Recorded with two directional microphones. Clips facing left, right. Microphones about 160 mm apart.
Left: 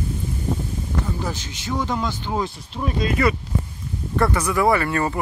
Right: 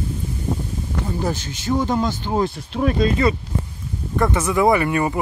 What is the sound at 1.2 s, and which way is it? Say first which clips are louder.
Speech: right 5 dB; 50° right (ahead or behind).